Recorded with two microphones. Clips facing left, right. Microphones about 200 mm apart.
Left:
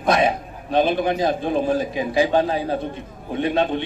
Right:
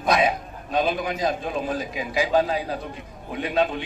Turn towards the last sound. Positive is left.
turn(degrees=25)  # may be behind; listen again after turning